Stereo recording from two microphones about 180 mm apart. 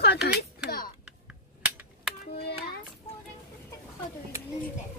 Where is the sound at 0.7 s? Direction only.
55° left (ahead or behind).